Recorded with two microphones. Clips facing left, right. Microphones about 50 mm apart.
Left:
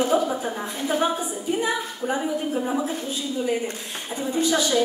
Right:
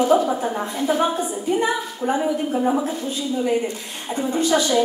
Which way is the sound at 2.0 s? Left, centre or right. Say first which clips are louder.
Right 4 dB; right.